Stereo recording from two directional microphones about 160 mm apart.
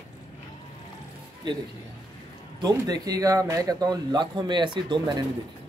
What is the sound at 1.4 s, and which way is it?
Speech, 25° right (ahead or behind).